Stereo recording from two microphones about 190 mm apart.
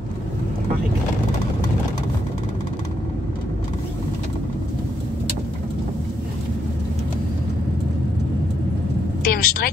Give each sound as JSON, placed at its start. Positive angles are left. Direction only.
{"t": 9.2, "sound": "vehicle", "side_deg": 50}